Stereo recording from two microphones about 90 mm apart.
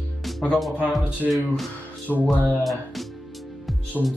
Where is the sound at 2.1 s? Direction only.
5° left (ahead or behind).